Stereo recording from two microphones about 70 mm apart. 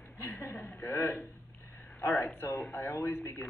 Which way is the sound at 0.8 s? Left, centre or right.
Left.